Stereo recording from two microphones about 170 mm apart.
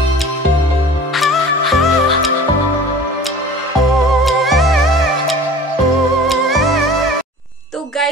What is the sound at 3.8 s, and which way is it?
Music, centre (ahead or behind).